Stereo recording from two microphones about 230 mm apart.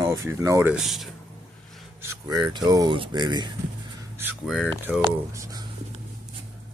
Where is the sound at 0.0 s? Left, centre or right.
Centre.